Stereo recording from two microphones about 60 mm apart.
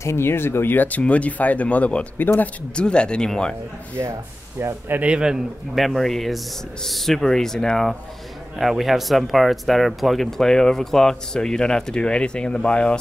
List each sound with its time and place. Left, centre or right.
0.0 s speech: left
2.1 s speech: left
2.7 s speech: centre
4.0 s speech: right
4.9 s a man's voice: centre
5.8 s speech: centre